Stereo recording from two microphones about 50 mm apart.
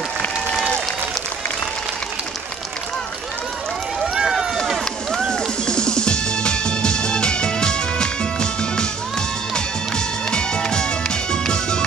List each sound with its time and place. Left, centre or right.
4.0 s run: centre
5.3 s music: centre